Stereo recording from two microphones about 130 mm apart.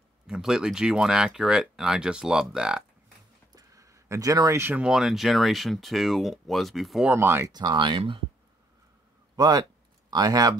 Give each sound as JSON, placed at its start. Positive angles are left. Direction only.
{"t": 0.3, "sound": "speech", "side_deg": -5}
{"t": 3.5, "sound": "speech", "side_deg": -25}
{"t": 7.1, "sound": "speech", "side_deg": -20}
{"t": 7.5, "sound": "speech", "side_deg": -35}
{"t": 9.4, "sound": "speech", "side_deg": -30}